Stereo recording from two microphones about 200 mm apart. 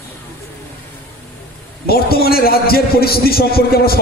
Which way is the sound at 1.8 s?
50° left (ahead or behind).